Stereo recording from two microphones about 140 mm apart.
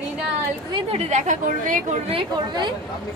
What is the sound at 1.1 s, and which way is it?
Speech, 65° right (ahead or behind).